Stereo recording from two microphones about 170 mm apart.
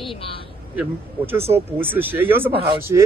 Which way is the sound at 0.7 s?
15° right (ahead or behind).